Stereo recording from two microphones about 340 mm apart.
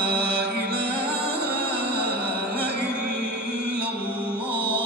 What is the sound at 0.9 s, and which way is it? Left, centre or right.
Music, centre.